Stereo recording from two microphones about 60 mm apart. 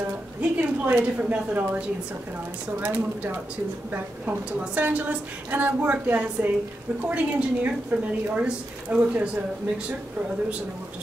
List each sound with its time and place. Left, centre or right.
0.4 s a woman's voice: right
3.9 s a woman's voice: right